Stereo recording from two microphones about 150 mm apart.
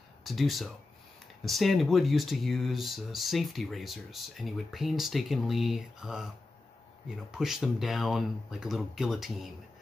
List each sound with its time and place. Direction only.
0.2 s speech: centre (ahead or behind)